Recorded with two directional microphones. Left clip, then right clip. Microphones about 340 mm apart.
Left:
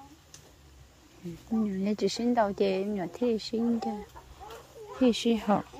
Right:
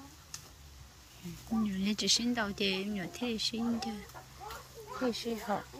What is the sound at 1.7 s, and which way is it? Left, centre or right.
Speech, centre.